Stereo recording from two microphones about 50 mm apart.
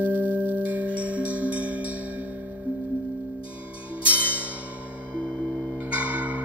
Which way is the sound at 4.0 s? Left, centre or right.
Right.